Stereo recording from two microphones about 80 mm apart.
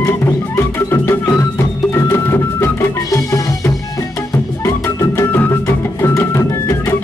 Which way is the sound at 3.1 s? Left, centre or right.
Left.